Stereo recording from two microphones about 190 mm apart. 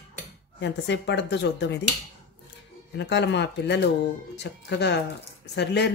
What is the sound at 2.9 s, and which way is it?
Speech, 65° left (ahead or behind).